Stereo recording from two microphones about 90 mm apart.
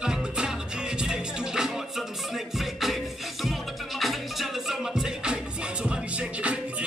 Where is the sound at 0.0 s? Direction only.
5° right (ahead or behind).